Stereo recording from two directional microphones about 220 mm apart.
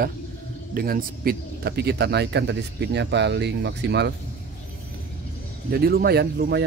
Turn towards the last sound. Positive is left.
turn(degrees=-50)  # may be behind; listen again after turning